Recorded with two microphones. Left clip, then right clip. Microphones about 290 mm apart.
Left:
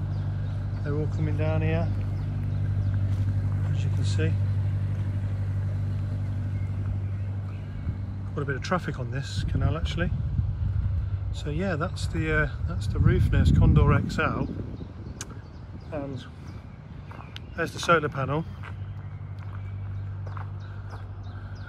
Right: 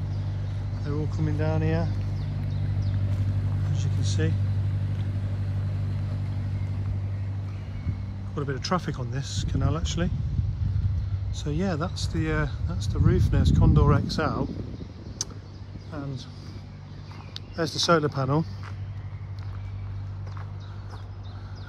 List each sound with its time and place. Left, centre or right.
0.8 s speech: centre
3.6 s speech: centre
8.4 s speech: centre
11.4 s speech: centre
15.2 s a sound: centre
15.9 s speech: centre
17.3 s speech: centre